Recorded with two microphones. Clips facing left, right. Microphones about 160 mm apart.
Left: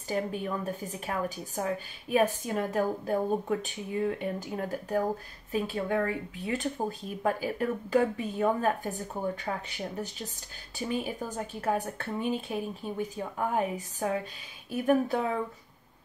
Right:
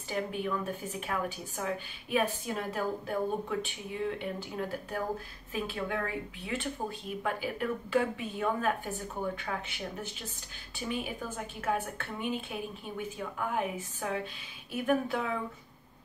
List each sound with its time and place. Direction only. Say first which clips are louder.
0.1 s speech: left 2 dB; 40° left (ahead or behind)
1.6 s a woman's voice: left 3 dB; 45° left (ahead or behind)